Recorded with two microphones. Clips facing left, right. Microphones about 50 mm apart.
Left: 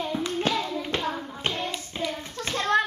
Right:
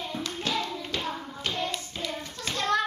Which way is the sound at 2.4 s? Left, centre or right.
Left.